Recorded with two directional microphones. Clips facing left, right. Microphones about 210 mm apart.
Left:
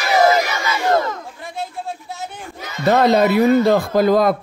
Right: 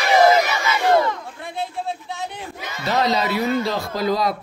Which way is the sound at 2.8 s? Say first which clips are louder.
Left 7 dB; 55° left (ahead or behind).